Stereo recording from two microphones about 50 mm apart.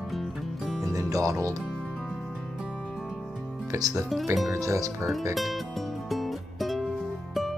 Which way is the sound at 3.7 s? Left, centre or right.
Right.